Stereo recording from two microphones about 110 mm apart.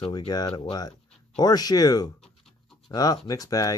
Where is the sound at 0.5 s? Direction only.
50° left (ahead or behind).